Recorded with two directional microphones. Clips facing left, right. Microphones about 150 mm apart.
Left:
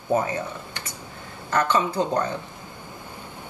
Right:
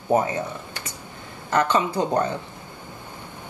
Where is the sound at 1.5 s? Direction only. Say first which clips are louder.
Right 1 dB; 15° right (ahead or behind).